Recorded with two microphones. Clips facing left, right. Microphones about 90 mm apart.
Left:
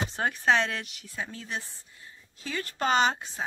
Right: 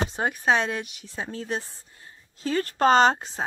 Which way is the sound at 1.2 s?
35° right (ahead or behind).